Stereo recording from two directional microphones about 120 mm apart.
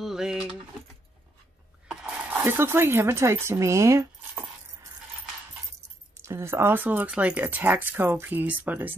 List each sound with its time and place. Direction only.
0.0 s speech: 5° right (ahead or behind)
2.4 s speech: 20° right (ahead or behind)
6.1 s speech: 20° right (ahead or behind)